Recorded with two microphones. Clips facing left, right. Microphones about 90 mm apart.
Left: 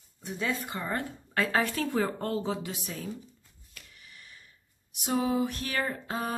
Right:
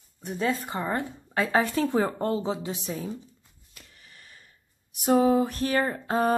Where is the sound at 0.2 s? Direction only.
35° right (ahead or behind).